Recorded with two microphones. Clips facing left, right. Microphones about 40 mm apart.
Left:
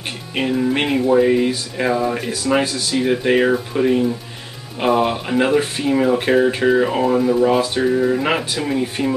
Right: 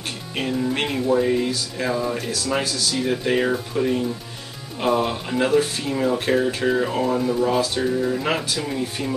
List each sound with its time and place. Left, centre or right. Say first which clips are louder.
0.4 s music: left 5 dB; centre
7.2 s speech: left 5 dB; centre
7.4 s music: left 5 dB; left